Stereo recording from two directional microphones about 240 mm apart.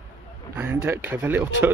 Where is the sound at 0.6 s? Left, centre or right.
Centre.